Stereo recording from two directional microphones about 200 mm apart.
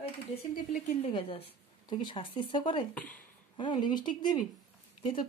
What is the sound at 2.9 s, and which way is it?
Speech, 5° left (ahead or behind).